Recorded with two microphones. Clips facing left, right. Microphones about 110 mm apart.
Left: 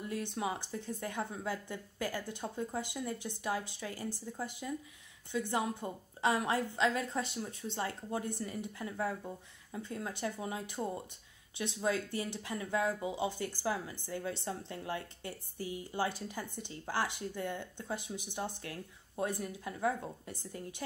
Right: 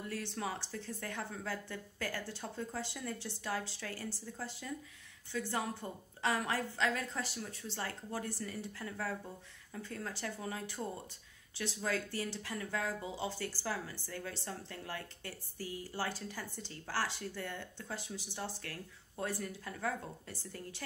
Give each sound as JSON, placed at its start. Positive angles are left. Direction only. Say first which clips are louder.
{"t": 0.1, "sound": "a woman's voice", "louder": "left 4 dB", "side_deg": 20}